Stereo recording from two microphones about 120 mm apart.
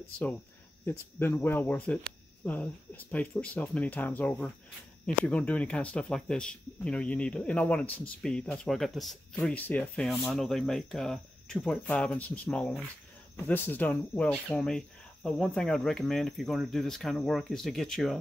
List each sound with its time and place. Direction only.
0.8 s speech: 20° left (ahead or behind)